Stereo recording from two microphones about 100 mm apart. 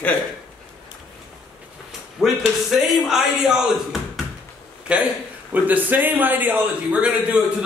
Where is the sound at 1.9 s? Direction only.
5° right (ahead or behind).